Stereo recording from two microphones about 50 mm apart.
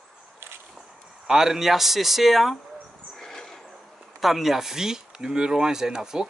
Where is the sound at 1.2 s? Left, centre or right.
Centre.